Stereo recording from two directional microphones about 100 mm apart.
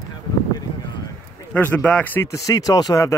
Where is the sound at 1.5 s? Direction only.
15° left (ahead or behind).